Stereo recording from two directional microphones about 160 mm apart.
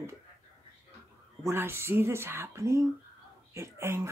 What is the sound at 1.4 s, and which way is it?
Speech, 15° right (ahead or behind).